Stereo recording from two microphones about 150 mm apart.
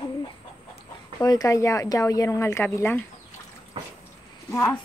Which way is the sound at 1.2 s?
25° left (ahead or behind).